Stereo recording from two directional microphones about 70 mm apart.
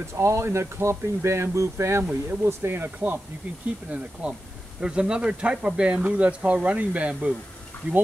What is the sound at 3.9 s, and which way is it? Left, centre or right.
Speech, centre.